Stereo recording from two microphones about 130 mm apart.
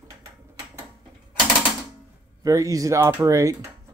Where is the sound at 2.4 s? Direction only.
25° right (ahead or behind).